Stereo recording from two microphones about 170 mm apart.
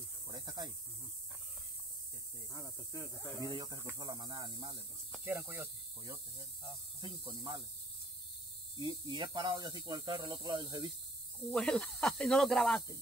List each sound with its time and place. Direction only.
0.3 s snake: 25° right (ahead or behind)
2.5 s speech: 20° left (ahead or behind)
3.3 s speech: 25° right (ahead or behind)
7.0 s speech: 25° right (ahead or behind)
8.7 s speech: 30° right (ahead or behind)
11.4 s speech: 5° left (ahead or behind)